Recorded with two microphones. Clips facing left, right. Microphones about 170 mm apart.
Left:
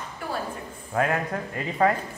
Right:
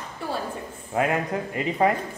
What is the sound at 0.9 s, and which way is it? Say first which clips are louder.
Speech: right 1 dB; 20° right (ahead or behind).